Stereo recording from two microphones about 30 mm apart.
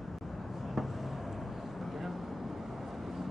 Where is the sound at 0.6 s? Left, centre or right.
Centre.